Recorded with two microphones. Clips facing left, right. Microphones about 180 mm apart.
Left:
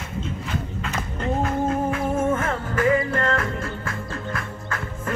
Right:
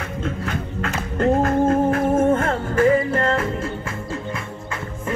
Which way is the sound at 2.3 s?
35° right (ahead or behind).